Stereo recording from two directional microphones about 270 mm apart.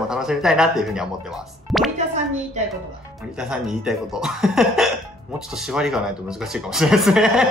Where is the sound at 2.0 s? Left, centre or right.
Right.